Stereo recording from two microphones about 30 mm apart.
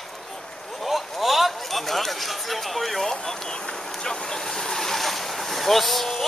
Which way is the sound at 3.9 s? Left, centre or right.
Centre.